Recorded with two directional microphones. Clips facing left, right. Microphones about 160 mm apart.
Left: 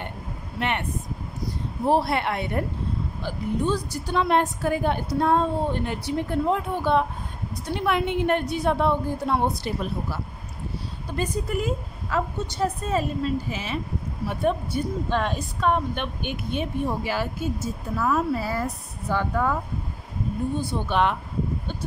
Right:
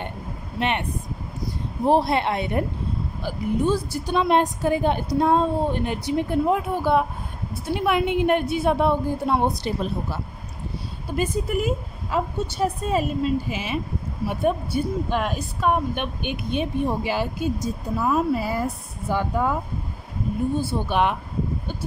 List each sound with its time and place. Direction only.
0.6 s speech: 20° right (ahead or behind)
1.9 s speech: 20° right (ahead or behind)
3.3 s a woman's voice: 10° right (ahead or behind)
11.1 s a woman's voice: 10° right (ahead or behind)